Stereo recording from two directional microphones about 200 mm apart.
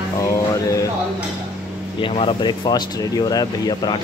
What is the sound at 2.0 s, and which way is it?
Speech, 25° left (ahead or behind).